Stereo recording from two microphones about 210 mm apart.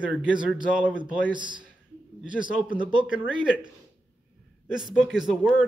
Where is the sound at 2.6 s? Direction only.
25° right (ahead or behind).